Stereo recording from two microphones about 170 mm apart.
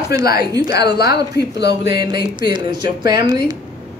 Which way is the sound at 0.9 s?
70° left (ahead or behind).